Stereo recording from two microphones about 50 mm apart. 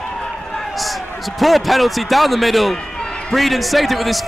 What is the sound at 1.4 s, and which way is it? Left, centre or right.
A man's voice, centre.